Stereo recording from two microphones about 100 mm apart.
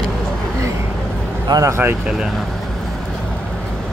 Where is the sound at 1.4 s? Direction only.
35° right (ahead or behind).